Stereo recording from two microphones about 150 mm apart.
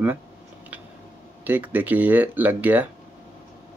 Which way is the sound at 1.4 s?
10° right (ahead or behind).